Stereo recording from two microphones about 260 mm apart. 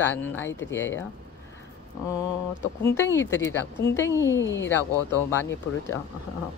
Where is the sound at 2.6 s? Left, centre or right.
Left.